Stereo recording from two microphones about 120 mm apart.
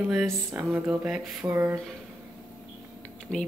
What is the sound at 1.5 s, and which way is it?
Speech, 20° right (ahead or behind).